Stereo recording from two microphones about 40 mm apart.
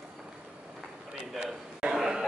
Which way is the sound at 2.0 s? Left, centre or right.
Centre.